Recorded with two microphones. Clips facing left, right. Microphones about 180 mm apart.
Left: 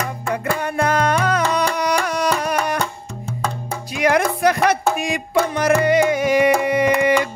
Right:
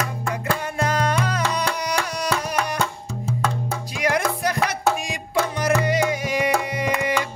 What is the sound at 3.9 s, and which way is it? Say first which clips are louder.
Music: left 5 dB; 65° left (ahead or behind).